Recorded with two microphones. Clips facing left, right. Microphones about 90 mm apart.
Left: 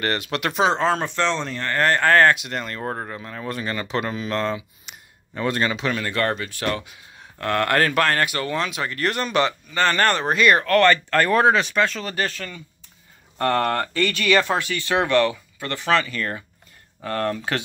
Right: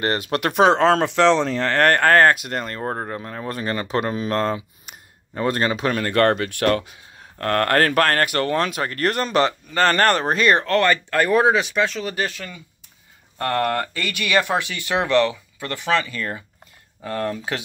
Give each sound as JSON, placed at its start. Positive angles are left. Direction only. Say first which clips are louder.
{"t": 0.0, "sound": "speech", "louder": "right 2 dB", "side_deg": -35}
{"t": 6.9, "sound": "speech", "louder": "even", "side_deg": -40}
{"t": 10.8, "sound": "speech", "louder": "left 2 dB", "side_deg": -15}